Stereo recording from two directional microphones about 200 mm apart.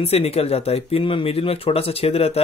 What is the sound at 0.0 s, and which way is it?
Speech, 30° left (ahead or behind).